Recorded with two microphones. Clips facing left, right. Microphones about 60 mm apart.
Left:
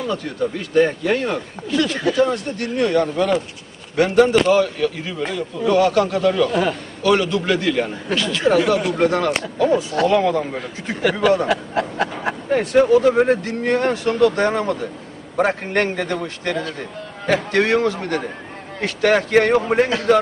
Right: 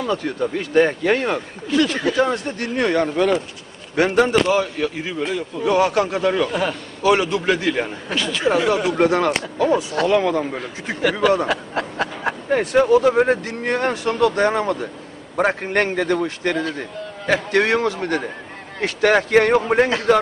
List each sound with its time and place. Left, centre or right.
0.7 s speech: right
1.7 s a man's voice: centre
2.1 s speech: right
8.1 s speech: centre
12.5 s speech: centre